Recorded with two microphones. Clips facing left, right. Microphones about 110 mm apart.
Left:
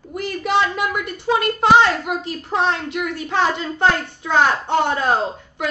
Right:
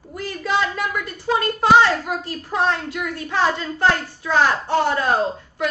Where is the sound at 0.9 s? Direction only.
20° left (ahead or behind).